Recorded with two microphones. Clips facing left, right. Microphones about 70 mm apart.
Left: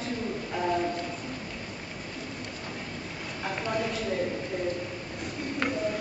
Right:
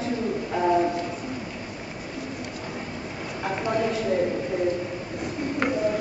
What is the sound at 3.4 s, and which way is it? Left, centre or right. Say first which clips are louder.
Speech: right 5 dB; centre.